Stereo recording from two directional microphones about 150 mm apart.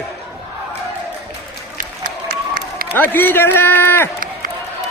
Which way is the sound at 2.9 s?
10° left (ahead or behind).